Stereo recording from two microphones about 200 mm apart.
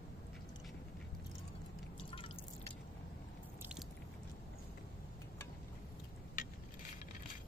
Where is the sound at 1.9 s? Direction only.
25° left (ahead or behind).